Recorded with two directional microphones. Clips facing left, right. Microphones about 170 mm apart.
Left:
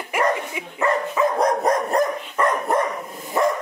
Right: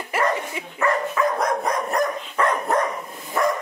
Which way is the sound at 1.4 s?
40° left (ahead or behind).